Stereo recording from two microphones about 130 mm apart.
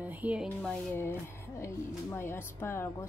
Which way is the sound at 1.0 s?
20° left (ahead or behind).